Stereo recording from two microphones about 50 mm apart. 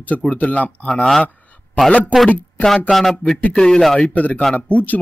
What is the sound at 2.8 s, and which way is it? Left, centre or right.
Speech, centre.